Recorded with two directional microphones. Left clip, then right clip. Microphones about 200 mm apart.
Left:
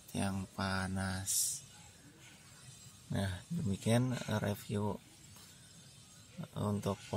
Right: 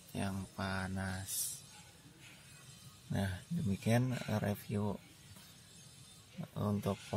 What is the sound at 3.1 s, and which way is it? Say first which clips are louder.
Speech: even; 15° left (ahead or behind).